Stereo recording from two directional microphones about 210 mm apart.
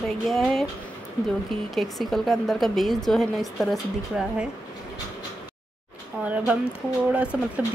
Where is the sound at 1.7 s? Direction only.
Centre (ahead or behind).